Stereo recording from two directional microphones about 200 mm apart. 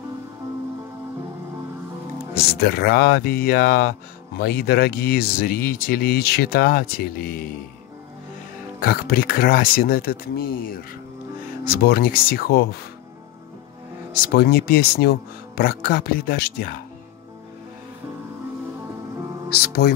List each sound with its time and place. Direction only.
2.6 s speech: 50° left (ahead or behind)
8.8 s speech: 45° left (ahead or behind)
14.3 s speech: 50° left (ahead or behind)
19.5 s speech: 50° left (ahead or behind)